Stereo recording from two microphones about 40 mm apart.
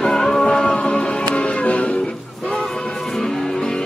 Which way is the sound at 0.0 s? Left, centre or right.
Centre.